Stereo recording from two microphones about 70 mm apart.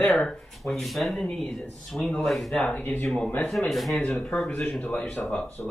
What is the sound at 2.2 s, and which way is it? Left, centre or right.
Speech, centre.